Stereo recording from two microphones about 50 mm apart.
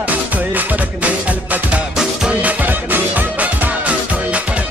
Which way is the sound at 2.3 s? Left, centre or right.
Right.